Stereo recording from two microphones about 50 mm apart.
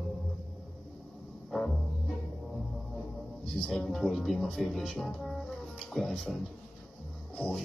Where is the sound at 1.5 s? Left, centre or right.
Centre.